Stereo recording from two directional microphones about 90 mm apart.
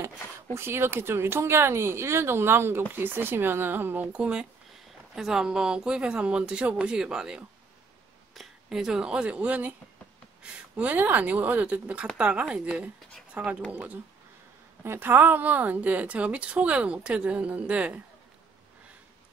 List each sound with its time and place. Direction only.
0.6 s a woman's voice: 25° right (ahead or behind)